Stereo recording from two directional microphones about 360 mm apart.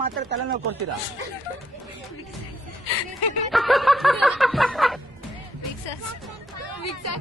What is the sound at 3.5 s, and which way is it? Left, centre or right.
Snicker, centre.